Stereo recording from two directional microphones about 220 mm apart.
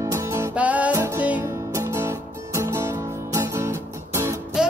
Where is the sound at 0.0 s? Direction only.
10° right (ahead or behind).